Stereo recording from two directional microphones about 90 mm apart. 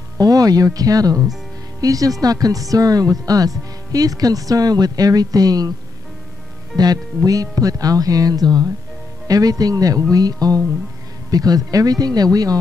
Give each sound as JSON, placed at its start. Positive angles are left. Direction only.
{"t": 0.2, "sound": "speech", "side_deg": -40}
{"t": 7.2, "sound": "speech", "side_deg": -40}